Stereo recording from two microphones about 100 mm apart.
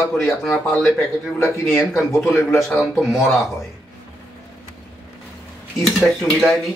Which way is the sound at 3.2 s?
30° left (ahead or behind).